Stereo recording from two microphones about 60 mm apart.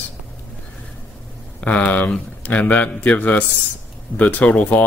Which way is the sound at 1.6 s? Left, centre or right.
Left.